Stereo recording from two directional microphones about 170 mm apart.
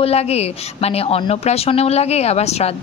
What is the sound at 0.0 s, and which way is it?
A woman's voice, 40° left (ahead or behind).